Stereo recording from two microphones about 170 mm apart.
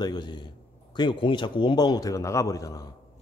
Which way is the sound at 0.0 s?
25° left (ahead or behind).